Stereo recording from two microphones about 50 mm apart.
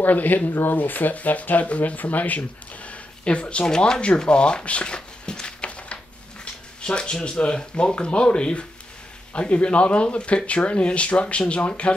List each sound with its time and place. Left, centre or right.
0.0 s speech: left